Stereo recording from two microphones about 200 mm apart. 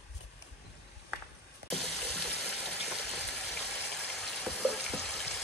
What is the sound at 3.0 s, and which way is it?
Frying, centre (ahead or behind).